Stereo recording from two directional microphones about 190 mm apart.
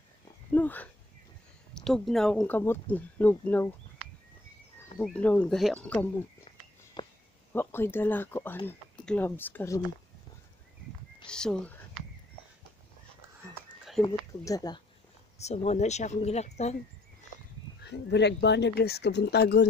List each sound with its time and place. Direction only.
0.6 s speech: 10° left (ahead or behind)
5.0 s speech: 5° left (ahead or behind)
7.0 s a sound: 25° left (ahead or behind)
7.5 s speech: 10° left (ahead or behind)
11.2 s speech: 5° left (ahead or behind)
14.0 s speech: 20° left (ahead or behind)
15.3 s speech: 35° left (ahead or behind)
17.8 s speech: 65° left (ahead or behind)